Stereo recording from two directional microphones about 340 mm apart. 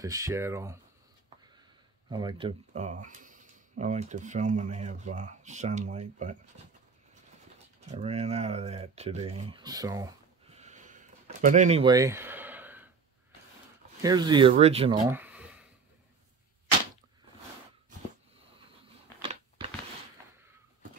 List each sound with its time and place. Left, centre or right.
0.0 s speech: centre
2.0 s speech: centre
7.8 s speech: centre
14.0 s speech: centre
15.0 s a sound: centre